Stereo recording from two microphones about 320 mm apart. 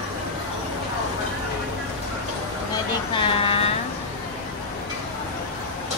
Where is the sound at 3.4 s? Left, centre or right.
Centre.